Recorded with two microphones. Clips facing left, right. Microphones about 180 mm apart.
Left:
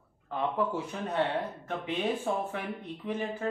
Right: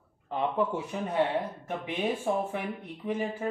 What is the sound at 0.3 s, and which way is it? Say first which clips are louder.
Speech: right 2 dB; 20° right (ahead or behind).